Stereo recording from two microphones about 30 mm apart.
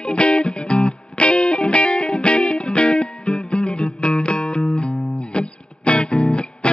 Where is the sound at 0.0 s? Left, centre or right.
Left.